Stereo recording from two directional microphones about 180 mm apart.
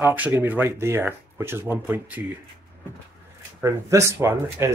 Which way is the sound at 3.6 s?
15° right (ahead or behind).